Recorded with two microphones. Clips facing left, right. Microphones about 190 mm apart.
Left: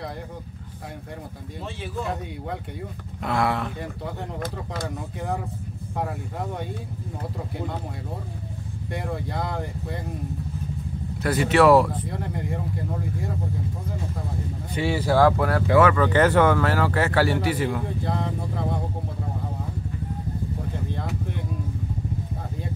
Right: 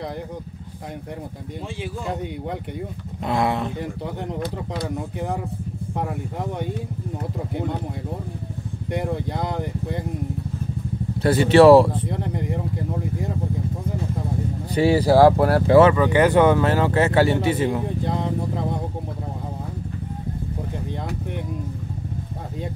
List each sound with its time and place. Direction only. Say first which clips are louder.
3.3 s speech: right 2 dB; 20° right (ahead or behind)
8.9 s speech: right 4 dB; 20° right (ahead or behind)
11.2 s speech: right 6 dB; 30° right (ahead or behind)
14.7 s speech: right 7 dB; 40° right (ahead or behind)
16.0 s speech: right 2 dB; 15° right (ahead or behind)